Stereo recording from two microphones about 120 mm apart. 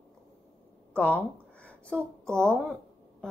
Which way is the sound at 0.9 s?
10° left (ahead or behind).